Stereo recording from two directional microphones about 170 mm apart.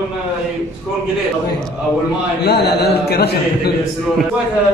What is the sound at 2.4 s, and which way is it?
A man's voice, 70° left (ahead or behind).